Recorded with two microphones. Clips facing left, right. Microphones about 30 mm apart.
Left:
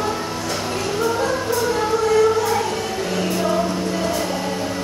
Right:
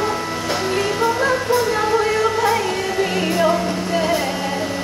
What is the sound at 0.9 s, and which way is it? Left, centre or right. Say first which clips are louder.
Music: even; right.